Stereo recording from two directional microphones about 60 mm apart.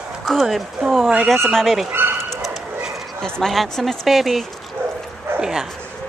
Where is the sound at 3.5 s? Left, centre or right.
Centre.